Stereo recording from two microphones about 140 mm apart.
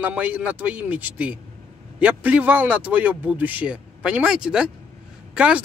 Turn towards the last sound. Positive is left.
turn(degrees=-5)  # may be behind; listen again after turning